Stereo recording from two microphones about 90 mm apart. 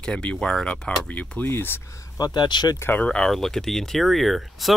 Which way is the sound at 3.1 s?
5° left (ahead or behind).